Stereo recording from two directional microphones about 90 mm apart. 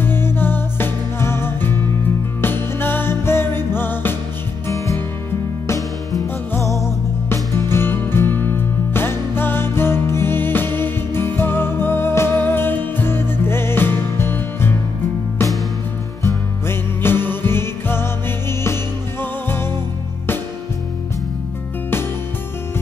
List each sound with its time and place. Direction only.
0.0 s music: 25° left (ahead or behind)
4.6 s music: 35° left (ahead or behind)
6.5 s music: 35° left (ahead or behind)
16.2 s music: 30° left (ahead or behind)
19.5 s music: 25° left (ahead or behind)